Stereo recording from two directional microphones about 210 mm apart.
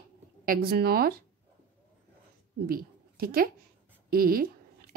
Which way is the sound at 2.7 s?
45° right (ahead or behind).